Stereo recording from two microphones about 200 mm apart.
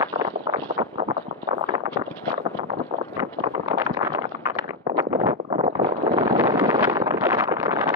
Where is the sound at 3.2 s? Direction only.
15° right (ahead or behind).